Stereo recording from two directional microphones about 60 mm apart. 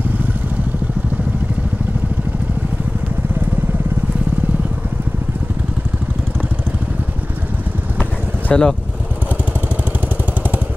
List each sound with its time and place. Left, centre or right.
8.5 s speech: centre